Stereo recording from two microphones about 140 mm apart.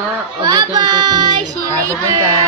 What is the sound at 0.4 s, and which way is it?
Speech, 25° right (ahead or behind).